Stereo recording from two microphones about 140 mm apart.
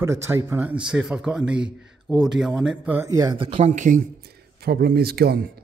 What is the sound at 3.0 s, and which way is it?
Speech, 25° right (ahead or behind).